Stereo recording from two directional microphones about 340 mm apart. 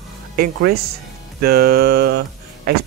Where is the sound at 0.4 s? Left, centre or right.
Right.